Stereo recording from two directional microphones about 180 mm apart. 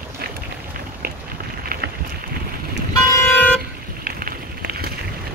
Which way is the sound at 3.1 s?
10° left (ahead or behind).